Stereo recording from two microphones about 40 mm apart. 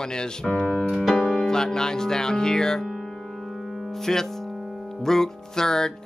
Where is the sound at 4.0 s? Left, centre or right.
Centre.